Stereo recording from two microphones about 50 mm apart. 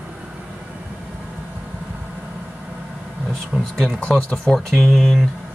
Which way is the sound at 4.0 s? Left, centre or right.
Left.